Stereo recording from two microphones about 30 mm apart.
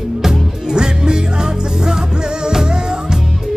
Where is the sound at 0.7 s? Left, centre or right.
Right.